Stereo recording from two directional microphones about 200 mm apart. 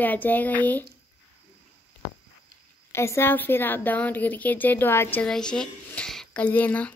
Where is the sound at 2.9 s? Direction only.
15° left (ahead or behind).